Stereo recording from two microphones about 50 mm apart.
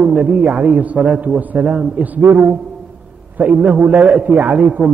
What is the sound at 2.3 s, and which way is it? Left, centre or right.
Speech, right.